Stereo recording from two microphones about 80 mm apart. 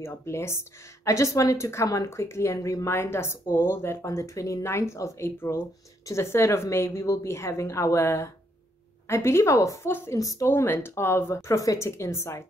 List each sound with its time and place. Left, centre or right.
0.0 s a woman's voice: left
9.8 s a woman's voice: left